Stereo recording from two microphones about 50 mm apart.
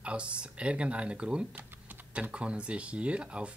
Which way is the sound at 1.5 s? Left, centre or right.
Right.